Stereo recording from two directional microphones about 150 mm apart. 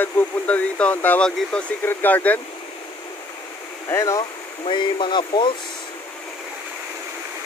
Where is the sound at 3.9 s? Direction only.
20° left (ahead or behind).